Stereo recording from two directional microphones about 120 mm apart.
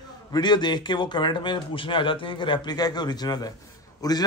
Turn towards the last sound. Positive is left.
turn(degrees=30)  # may be behind; listen again after turning